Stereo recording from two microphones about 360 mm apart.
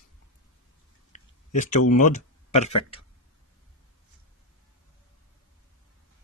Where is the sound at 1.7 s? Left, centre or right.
Left.